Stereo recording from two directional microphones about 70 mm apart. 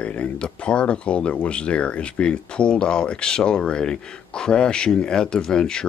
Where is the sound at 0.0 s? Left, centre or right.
Centre.